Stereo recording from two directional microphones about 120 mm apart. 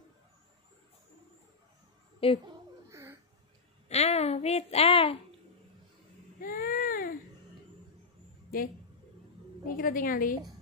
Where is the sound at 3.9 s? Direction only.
60° left (ahead or behind).